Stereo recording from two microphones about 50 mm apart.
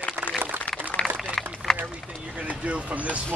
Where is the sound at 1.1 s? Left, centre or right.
Centre.